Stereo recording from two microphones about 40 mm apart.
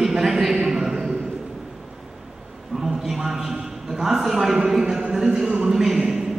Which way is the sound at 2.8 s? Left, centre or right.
Centre.